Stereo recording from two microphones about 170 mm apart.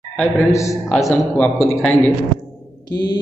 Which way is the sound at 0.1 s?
15° left (ahead or behind).